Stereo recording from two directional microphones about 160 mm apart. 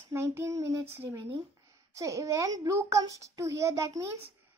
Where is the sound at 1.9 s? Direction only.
20° right (ahead or behind).